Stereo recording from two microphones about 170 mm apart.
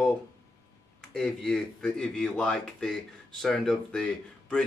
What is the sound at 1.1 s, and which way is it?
Speech, 5° left (ahead or behind).